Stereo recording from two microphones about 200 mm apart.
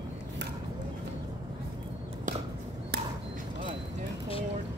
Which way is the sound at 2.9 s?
55° right (ahead or behind).